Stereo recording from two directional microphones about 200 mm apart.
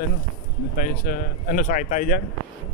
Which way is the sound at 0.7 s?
45° left (ahead or behind).